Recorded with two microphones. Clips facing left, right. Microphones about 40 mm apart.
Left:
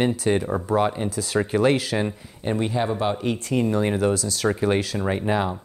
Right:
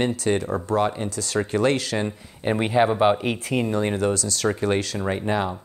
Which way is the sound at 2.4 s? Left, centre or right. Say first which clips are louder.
Right 4 dB; right.